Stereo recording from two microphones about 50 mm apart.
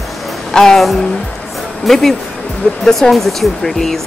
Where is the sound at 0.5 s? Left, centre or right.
Centre.